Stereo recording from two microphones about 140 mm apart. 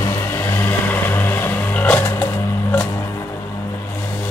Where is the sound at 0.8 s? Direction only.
15° left (ahead or behind).